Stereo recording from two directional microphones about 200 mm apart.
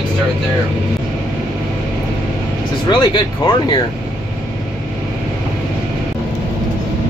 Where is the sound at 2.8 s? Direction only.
25° left (ahead or behind).